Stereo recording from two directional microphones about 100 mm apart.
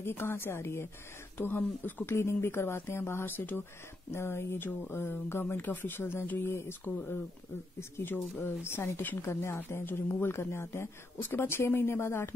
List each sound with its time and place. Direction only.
0.0 s speech: 20° left (ahead or behind)